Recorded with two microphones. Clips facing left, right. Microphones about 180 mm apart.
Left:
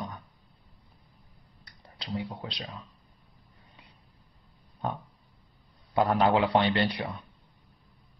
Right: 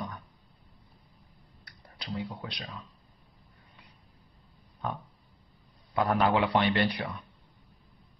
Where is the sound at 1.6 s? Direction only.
20° left (ahead or behind).